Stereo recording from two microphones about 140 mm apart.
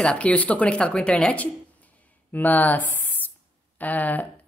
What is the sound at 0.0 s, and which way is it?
Speech, 10° left (ahead or behind).